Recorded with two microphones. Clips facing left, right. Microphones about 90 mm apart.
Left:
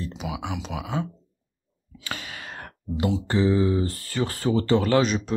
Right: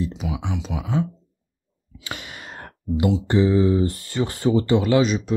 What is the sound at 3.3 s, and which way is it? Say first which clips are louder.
Speech: right 3 dB; 20° right (ahead or behind).